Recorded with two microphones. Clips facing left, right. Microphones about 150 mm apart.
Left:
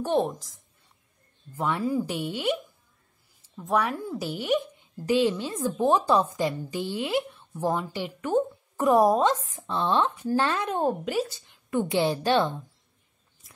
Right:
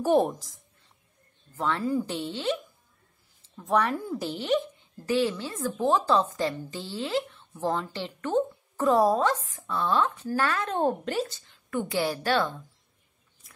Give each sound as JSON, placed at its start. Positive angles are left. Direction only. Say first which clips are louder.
{"t": 0.0, "sound": "a woman's voice", "louder": "right 2 dB", "side_deg": -5}
{"t": 1.6, "sound": "speech", "louder": "left 1 dB", "side_deg": 15}
{"t": 3.5, "sound": "speech", "louder": "right 1 dB", "side_deg": 5}
{"t": 10.7, "sound": "speech", "louder": "even", "side_deg": 5}